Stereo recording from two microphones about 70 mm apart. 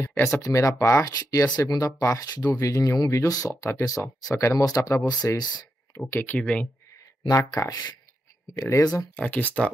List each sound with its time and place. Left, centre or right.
0.0 s speech: left
0.4 s speech: left
1.0 s speech: left
1.6 s speech: left
2.3 s speech: left
3.0 s speech: left
5.0 s speech: left
6.0 s speech: left
6.4 s speech: centre
7.2 s speech: left
8.5 s speech: left
9.1 s speech: left